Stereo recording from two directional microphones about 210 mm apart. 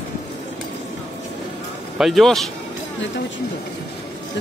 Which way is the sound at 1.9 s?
Centre (ahead or behind).